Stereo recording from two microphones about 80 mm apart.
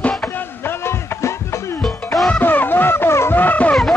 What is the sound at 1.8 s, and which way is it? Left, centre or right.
Music, centre.